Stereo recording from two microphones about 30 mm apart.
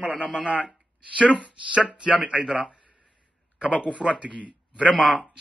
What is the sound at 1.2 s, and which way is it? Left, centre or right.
A man's voice, right.